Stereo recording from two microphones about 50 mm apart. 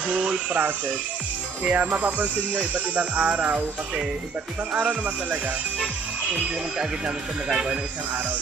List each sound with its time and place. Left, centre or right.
0.0 s speech: right
6.8 s speech: centre